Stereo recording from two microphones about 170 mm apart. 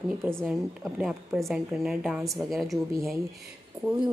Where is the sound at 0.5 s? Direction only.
5° right (ahead or behind).